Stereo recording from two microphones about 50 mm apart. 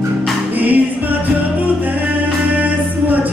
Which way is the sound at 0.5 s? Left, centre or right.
Right.